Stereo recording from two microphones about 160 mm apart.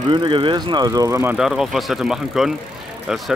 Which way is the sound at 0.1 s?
30° right (ahead or behind).